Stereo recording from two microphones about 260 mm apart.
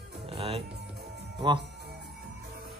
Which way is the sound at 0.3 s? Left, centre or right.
Right.